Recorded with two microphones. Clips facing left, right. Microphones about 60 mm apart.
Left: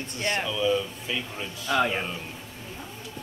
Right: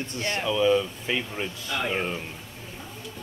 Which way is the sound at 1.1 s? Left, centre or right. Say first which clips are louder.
Right 3 dB; right.